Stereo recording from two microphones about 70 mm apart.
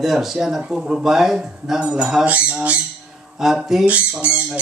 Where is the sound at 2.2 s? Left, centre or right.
Right.